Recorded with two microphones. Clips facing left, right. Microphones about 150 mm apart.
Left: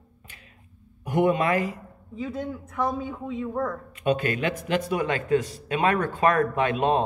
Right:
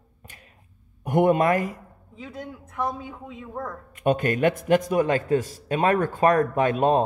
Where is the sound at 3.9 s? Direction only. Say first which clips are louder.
Right 3 dB; 45° right (ahead or behind).